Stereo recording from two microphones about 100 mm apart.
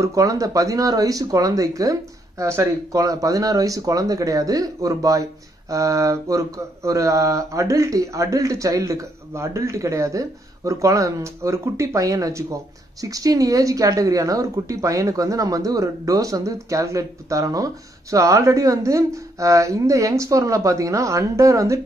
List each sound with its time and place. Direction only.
0.0 s speech: 35° right (ahead or behind)